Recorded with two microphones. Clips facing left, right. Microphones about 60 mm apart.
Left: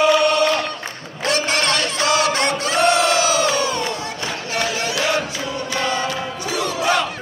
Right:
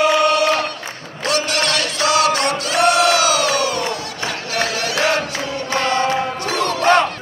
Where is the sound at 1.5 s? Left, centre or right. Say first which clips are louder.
Even; left.